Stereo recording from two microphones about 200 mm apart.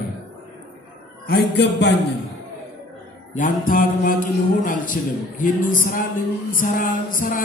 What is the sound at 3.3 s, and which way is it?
Music, 40° left (ahead or behind).